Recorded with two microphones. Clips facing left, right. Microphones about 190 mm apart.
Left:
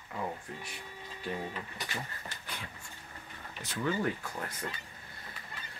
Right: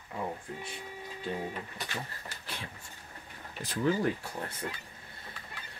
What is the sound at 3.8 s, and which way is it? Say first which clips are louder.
Speech: right 3 dB; 30° right (ahead or behind).